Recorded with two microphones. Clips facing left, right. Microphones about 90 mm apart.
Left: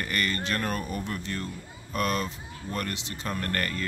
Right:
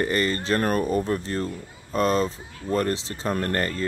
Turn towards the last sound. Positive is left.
turn(degrees=-25)  # may be behind; listen again after turning